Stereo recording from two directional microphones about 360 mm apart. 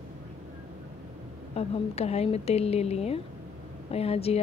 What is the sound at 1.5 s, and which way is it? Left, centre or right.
A woman's voice, centre.